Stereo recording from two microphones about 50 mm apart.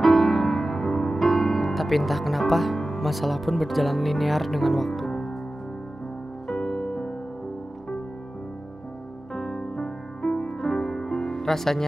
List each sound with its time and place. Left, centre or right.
0.0 s music: centre
6.4 s music: centre
9.3 s music: centre